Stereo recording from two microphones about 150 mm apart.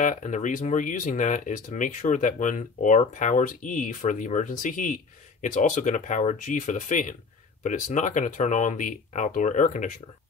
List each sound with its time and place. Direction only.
0.0 s speech: 55° left (ahead or behind)